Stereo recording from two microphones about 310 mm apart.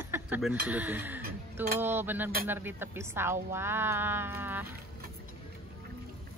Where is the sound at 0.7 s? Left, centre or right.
Centre.